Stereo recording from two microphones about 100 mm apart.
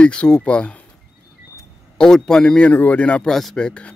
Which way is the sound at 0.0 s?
10° left (ahead or behind).